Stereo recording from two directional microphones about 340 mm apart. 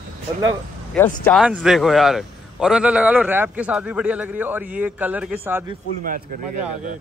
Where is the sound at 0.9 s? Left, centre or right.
Centre.